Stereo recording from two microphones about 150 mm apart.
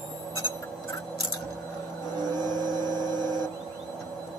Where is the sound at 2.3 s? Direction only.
25° right (ahead or behind).